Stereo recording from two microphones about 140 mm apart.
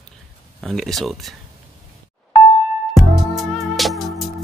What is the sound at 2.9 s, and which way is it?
Music, centre (ahead or behind).